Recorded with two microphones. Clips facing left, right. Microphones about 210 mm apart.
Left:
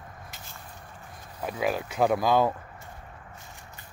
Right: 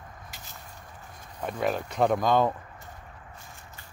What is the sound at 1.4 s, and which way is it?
Speech, 5° left (ahead or behind).